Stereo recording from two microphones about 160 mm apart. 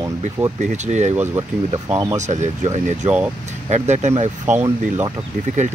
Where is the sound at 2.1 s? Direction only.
50° right (ahead or behind).